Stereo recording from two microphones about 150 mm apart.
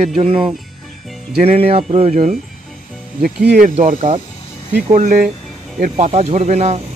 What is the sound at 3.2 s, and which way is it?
Speech, 90° right.